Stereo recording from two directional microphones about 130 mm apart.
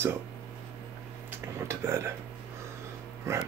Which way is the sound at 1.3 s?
20° right (ahead or behind).